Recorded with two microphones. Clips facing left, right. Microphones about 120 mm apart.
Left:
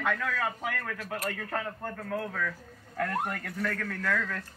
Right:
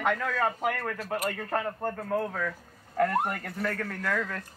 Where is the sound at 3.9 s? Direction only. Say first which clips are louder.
Right 1 dB; 15° right (ahead or behind).